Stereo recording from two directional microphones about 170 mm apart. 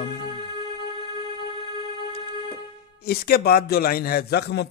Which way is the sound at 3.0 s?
65° left (ahead or behind).